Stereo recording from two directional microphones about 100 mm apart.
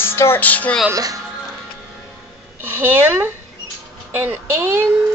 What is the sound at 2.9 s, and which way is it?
Speech, 20° right (ahead or behind).